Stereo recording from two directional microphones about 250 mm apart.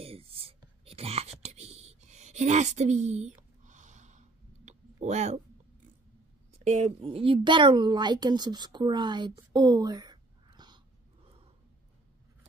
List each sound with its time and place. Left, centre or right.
0.0 s whispering: right
4.6 s a sound: right
6.6 s speech: right